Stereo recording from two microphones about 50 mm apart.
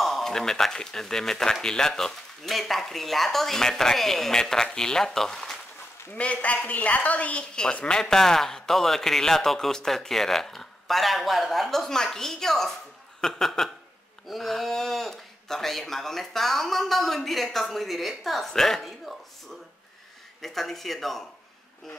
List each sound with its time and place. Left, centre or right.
0.0 s speech: centre
6.1 s a woman's voice: left; by 19.1 s centre
20.4 s speech: centre